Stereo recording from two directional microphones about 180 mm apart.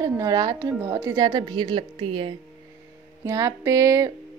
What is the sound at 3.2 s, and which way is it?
Speech, 20° right (ahead or behind).